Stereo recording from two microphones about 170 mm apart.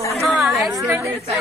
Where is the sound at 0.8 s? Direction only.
10° right (ahead or behind).